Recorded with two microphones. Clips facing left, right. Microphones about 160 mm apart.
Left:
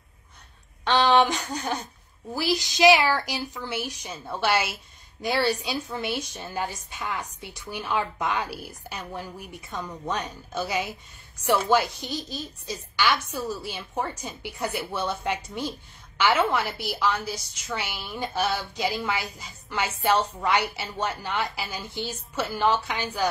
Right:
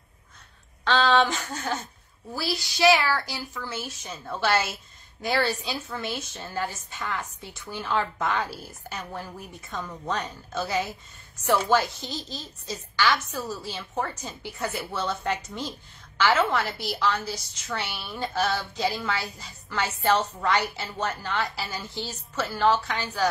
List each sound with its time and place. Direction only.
0.8 s a woman's voice: 15° left (ahead or behind)